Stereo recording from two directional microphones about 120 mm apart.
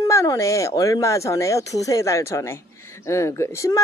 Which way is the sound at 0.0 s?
30° left (ahead or behind).